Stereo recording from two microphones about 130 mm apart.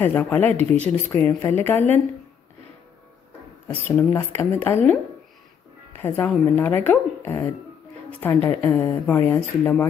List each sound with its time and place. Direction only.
0.0 s speech: 15° left (ahead or behind)
3.8 s speech: 20° left (ahead or behind)
5.9 s a woman's voice: 15° left (ahead or behind)